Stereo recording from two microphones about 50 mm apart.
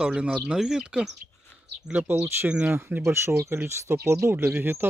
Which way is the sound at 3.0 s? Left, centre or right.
Right.